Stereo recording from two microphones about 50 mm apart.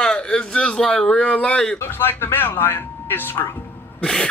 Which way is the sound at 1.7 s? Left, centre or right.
Left.